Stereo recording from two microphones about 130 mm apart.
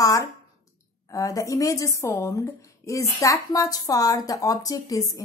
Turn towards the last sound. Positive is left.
turn(degrees=25)  # may be behind; listen again after turning